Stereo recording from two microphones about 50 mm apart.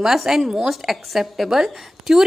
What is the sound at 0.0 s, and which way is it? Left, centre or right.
A woman's voice, centre.